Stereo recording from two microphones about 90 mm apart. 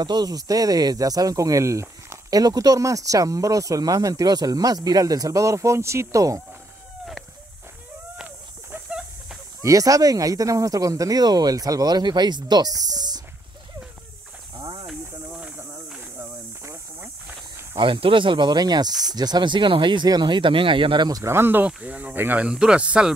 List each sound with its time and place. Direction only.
0.0 s speech: 50° right (ahead or behind)
9.6 s speech: 40° right (ahead or behind)
15.3 s a sound: 15° right (ahead or behind)
17.7 s speech: 70° right (ahead or behind)
21.1 s speech: 30° right (ahead or behind)
21.6 s speech: 15° right (ahead or behind)
22.5 s speech: 10° right (ahead or behind)